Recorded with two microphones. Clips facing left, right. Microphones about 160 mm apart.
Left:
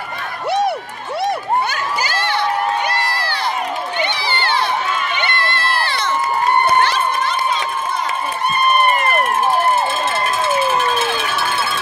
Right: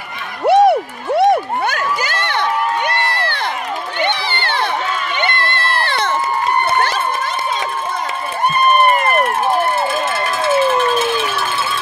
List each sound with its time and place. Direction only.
0.5 s a sound: 55° right (ahead or behind)
3.1 s crowd: 55° right (ahead or behind)
4.0 s run: 55° right (ahead or behind)
5.2 s crowd: 50° right (ahead or behind)